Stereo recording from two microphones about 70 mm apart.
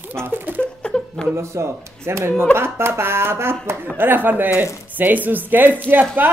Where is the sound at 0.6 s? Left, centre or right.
Centre.